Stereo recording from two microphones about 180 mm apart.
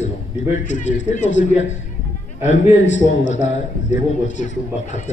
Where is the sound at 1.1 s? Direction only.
40° left (ahead or behind).